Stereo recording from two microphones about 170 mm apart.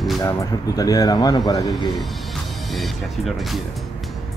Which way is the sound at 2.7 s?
Centre (ahead or behind).